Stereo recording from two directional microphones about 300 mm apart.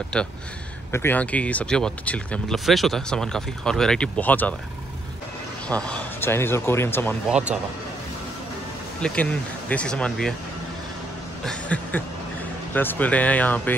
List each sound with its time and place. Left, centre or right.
0.1 s speech: centre
5.7 s speech: centre
9.0 s speech: centre
11.4 s a sound: centre
12.7 s speech: centre